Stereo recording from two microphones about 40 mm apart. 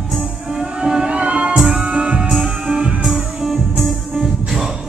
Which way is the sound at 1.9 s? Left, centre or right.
Right.